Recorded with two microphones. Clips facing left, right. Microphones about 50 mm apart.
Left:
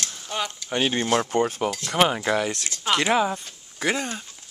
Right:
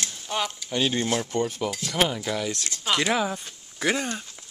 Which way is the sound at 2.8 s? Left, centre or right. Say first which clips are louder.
Left 3 dB; centre.